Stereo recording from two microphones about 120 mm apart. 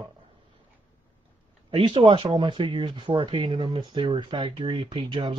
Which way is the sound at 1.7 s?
50° right (ahead or behind).